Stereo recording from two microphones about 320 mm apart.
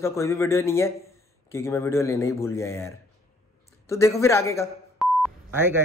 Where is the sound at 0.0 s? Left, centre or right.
Centre.